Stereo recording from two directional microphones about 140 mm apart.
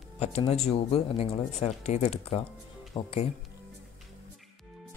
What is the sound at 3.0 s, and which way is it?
Speech, 35° left (ahead or behind).